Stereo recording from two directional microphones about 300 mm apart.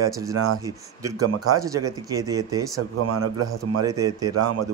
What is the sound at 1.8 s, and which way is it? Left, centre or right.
Speech, right.